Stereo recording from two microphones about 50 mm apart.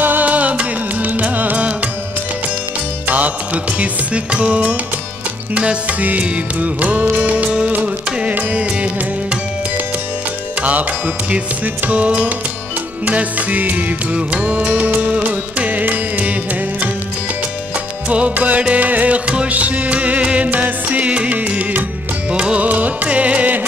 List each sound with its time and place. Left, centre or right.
0.0 s music: right
3.1 s music: right
10.6 s music: right
18.0 s music: right